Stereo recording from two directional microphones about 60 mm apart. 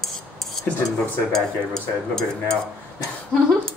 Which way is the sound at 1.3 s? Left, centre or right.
Centre.